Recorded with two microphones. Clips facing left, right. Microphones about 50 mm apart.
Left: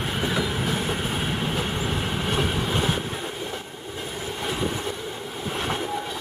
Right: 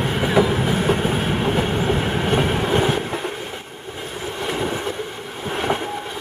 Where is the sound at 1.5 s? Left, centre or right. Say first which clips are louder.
Right 7 dB; right.